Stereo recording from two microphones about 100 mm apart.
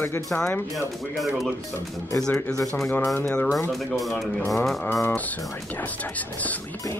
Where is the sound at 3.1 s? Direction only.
20° left (ahead or behind).